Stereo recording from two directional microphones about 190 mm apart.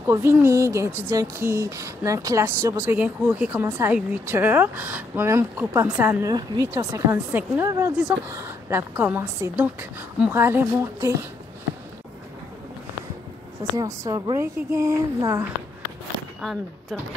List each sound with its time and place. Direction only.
0.0 s speech: 15° right (ahead or behind)
13.7 s speech: 20° right (ahead or behind)
16.3 s speech: centre (ahead or behind)